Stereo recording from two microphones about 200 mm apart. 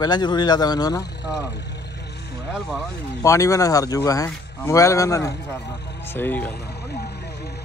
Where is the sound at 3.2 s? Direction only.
15° left (ahead or behind).